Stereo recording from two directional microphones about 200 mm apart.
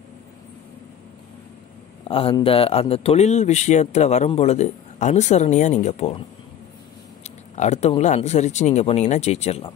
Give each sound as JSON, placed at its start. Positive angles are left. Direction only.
{"t": 2.0, "sound": "a man's voice", "side_deg": 30}
{"t": 7.2, "sound": "a man's voice", "side_deg": 35}